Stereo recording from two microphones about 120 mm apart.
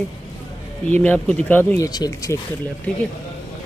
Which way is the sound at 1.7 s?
30° left (ahead or behind).